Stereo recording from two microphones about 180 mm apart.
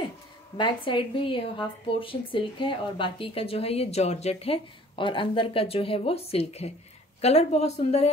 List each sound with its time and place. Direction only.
0.6 s a woman's voice: 25° left (ahead or behind)